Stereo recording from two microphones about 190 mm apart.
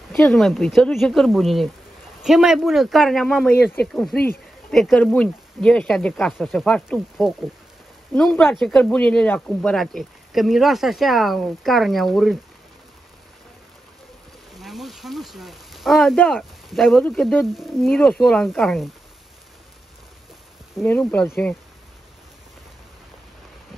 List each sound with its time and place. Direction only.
0.1 s speech: 5° left (ahead or behind)
3.5 s speech: 55° left (ahead or behind)
3.8 s speech: 5° left (ahead or behind)
14.5 s speech: centre (ahead or behind)
20.8 s speech: 10° left (ahead or behind)